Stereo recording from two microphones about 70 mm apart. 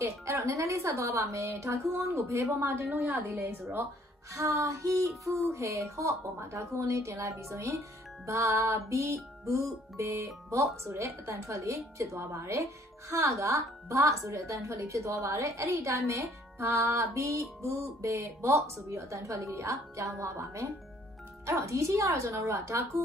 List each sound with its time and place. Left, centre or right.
0.0 s speech: right
2.6 s a woman's voice: right
3.3 s a woman's voice: right